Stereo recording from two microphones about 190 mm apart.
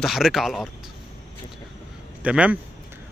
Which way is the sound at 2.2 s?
5° right (ahead or behind).